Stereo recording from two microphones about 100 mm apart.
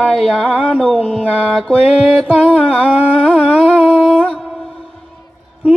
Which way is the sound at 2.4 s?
10° right (ahead or behind).